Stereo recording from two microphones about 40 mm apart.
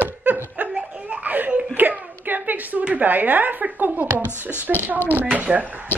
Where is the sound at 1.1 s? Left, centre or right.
Right.